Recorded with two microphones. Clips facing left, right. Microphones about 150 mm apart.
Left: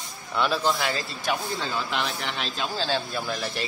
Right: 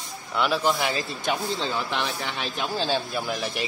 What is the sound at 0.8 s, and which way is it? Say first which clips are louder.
Speech: right 2 dB; 15° right (ahead or behind).